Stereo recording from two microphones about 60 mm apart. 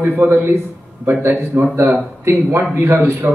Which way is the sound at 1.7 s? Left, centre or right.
Right.